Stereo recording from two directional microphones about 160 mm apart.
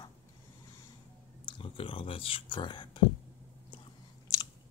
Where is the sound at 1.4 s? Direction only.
35° left (ahead or behind).